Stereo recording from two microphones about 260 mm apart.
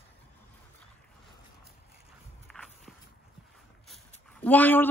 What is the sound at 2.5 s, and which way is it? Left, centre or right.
Walk, centre.